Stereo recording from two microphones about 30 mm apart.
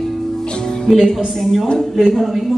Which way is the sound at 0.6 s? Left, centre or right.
Centre.